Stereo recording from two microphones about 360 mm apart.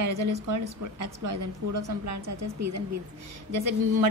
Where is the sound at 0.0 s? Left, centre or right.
Right.